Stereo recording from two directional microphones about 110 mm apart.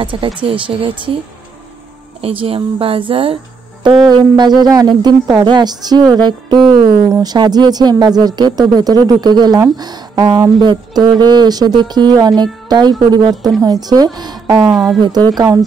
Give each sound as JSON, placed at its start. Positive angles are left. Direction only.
{"t": 0.0, "sound": "speech", "side_deg": -50}
{"t": 2.2, "sound": "speech", "side_deg": -60}
{"t": 3.8, "sound": "speech", "side_deg": -45}